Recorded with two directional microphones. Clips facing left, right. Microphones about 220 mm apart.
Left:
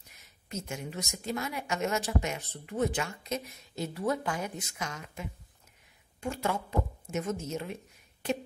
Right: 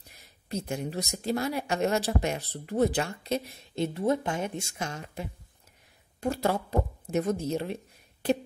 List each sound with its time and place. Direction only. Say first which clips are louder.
0.1 s speech: right 5 dB; 35° right (ahead or behind)